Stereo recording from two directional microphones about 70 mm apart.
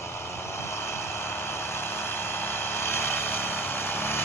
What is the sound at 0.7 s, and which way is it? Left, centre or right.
Vehicle, left.